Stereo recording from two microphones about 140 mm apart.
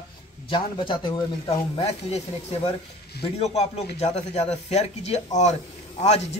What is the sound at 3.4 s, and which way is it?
Speech, 50° left (ahead or behind).